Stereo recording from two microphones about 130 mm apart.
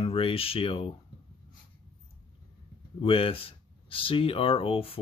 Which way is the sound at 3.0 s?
45° left (ahead or behind).